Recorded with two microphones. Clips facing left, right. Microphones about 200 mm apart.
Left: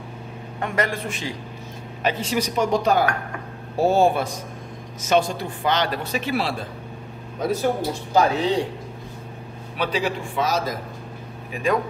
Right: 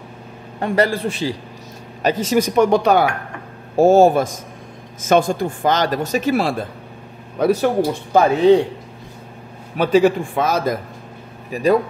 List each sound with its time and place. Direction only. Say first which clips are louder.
0.6 s a man's voice: right 7 dB; 35° right (ahead or behind); by 3.1 s 65° right (ahead or behind)
3.7 s speech: right 7 dB; 45° right (ahead or behind)
7.3 s speech: right 6 dB; 70° right (ahead or behind)
9.8 s speech: right 10 dB; 45° right (ahead or behind)
11.5 s a man's voice: right 7 dB; 40° right (ahead or behind)